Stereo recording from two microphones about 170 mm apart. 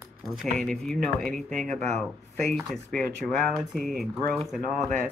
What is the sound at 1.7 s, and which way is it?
Speech, 40° right (ahead or behind).